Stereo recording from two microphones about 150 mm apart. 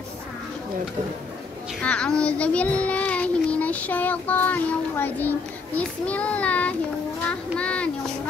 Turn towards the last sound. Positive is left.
turn(degrees=5)  # may be behind; listen again after turning